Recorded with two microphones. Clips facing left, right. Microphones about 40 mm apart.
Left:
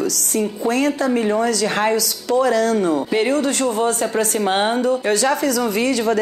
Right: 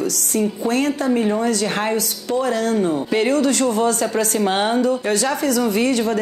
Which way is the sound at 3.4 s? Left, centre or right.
Left.